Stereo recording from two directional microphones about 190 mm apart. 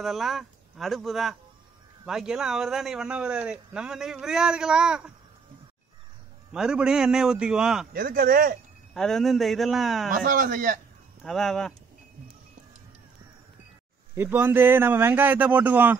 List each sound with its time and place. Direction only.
0.0 s speech: centre (ahead or behind)
6.5 s speech: 5° right (ahead or behind)
7.9 s speech: 50° right (ahead or behind)
8.9 s speech: centre (ahead or behind)
10.1 s speech: 45° right (ahead or behind)
11.2 s speech: centre (ahead or behind)
14.1 s a man's voice: 10° right (ahead or behind)